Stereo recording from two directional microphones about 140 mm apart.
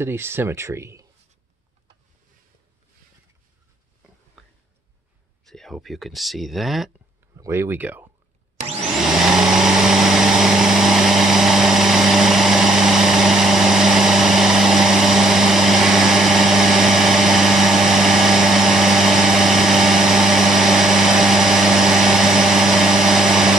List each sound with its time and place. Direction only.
0.0 s speech: 15° right (ahead or behind)
4.4 s a sound: centre (ahead or behind)
5.4 s speech: 5° left (ahead or behind)
7.3 s speech: 20° right (ahead or behind)
8.5 s vacuum cleaner: 50° right (ahead or behind)
9.0 s vehicle: 5° right (ahead or behind)